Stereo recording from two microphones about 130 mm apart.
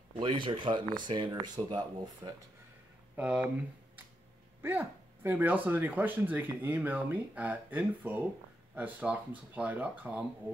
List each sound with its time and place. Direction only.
0.2 s speech: 40° right (ahead or behind)
3.2 s speech: 10° right (ahead or behind)
4.6 s speech: 15° right (ahead or behind)